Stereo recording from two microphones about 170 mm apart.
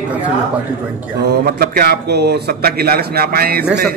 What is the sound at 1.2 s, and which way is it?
Speech, 70° right (ahead or behind).